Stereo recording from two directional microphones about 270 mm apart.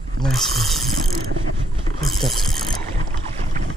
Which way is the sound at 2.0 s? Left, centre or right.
Centre.